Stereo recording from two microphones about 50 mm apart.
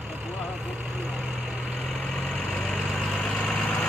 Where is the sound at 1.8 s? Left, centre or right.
Left.